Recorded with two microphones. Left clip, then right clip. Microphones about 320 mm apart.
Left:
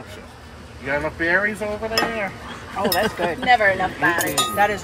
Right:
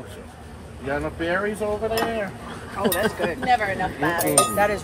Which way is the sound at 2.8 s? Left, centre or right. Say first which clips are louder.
Left 1 dB; left.